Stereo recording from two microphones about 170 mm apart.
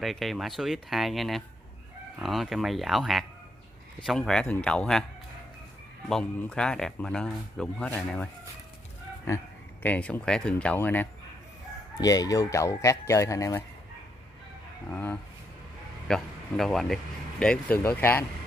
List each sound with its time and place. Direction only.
0.0 s speech: centre (ahead or behind)
6.0 s speech: 5° left (ahead or behind)
12.0 s speech: 20° left (ahead or behind)
14.9 s speech: 10° left (ahead or behind)